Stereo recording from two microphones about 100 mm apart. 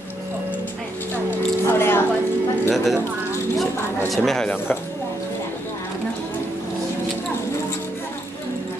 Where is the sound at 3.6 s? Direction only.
Centre (ahead or behind).